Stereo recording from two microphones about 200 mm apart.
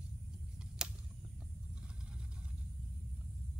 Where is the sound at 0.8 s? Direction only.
5° right (ahead or behind).